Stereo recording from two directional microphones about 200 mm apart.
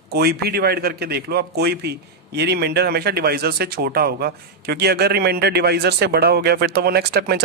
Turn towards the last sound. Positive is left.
turn(degrees=-50)  # may be behind; listen again after turning